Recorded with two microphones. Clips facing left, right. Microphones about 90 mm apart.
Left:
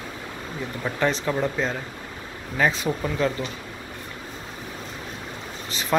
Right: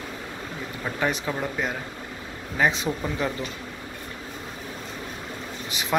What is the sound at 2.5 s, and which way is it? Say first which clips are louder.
Speech: left 1 dB; 20° right (ahead or behind).